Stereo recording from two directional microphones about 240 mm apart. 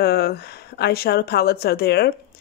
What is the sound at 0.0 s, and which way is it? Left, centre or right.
A woman's voice, left.